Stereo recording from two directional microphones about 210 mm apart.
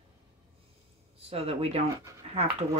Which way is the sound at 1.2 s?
30° right (ahead or behind).